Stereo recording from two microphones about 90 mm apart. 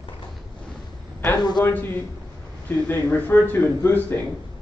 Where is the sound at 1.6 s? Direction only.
20° left (ahead or behind).